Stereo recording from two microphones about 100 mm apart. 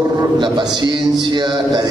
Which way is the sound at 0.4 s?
50° right (ahead or behind).